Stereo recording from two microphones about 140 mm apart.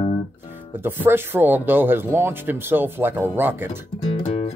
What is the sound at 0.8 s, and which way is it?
Speech, 15° right (ahead or behind).